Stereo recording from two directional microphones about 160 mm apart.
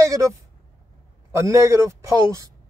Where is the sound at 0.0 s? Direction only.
20° right (ahead or behind).